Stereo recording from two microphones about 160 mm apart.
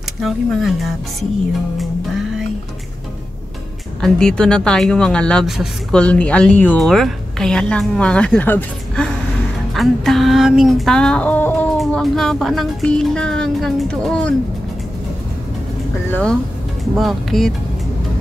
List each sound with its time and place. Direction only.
0.2 s speech: centre (ahead or behind)
4.0 s speech: 5° left (ahead or behind)
11.7 s speech: centre (ahead or behind)
16.1 s speech: 10° left (ahead or behind)